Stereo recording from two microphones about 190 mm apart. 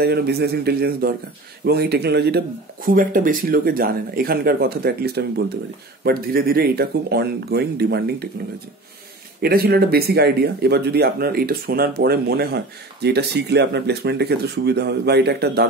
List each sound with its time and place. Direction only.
0.0 s speech: 55° right (ahead or behind)
9.4 s speech: 55° right (ahead or behind)